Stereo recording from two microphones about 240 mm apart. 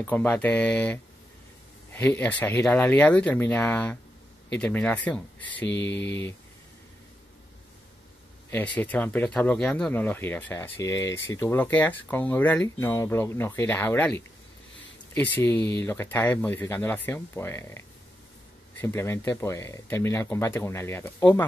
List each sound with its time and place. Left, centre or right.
0.0 s speech: centre
5.9 s speech: left
8.5 s speech: centre